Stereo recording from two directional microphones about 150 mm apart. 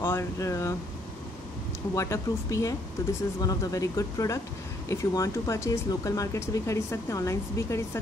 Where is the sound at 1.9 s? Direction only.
20° left (ahead or behind).